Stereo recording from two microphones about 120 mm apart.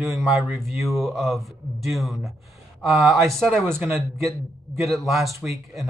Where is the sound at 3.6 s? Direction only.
20° right (ahead or behind).